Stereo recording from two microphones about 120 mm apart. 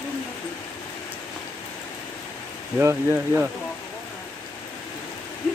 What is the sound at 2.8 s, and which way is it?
Speech, 20° right (ahead or behind).